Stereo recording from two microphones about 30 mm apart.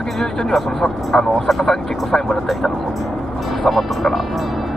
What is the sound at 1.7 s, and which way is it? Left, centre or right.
Speech, centre.